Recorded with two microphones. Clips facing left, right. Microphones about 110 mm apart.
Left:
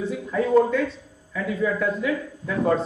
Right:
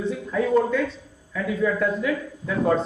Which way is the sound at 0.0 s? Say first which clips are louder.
Even; 5° left (ahead or behind).